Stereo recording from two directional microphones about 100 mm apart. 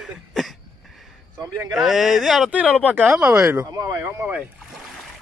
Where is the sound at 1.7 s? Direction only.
5° right (ahead or behind).